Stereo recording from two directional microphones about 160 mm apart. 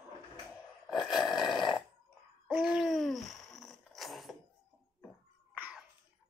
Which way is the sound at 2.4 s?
5° right (ahead or behind).